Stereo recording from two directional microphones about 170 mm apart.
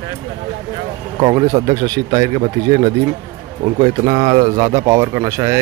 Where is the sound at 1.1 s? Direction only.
25° right (ahead or behind).